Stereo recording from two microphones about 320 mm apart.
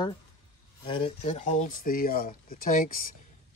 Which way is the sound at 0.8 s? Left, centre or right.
Centre.